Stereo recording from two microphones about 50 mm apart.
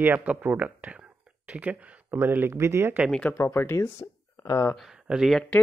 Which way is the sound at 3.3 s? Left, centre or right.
Left.